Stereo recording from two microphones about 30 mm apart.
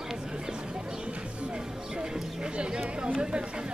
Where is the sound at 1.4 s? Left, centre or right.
Right.